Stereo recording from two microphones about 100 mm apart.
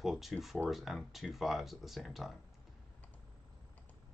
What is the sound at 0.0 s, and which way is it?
Speech, centre (ahead or behind).